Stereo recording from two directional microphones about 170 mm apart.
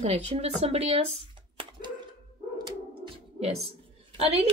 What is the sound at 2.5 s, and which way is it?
Dog, 25° right (ahead or behind).